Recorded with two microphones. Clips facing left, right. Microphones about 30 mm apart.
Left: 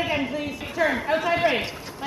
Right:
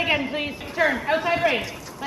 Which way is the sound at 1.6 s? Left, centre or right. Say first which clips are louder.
Left 1 dB; left.